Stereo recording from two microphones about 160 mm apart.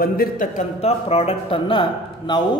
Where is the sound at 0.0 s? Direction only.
65° left (ahead or behind).